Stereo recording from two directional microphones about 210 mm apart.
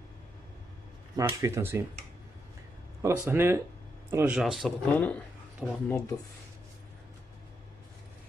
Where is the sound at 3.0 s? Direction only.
10° right (ahead or behind).